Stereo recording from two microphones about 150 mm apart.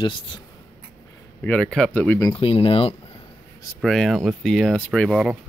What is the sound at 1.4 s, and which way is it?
Speech, 5° left (ahead or behind).